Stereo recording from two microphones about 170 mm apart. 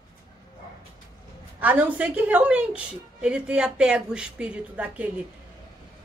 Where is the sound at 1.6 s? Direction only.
10° right (ahead or behind).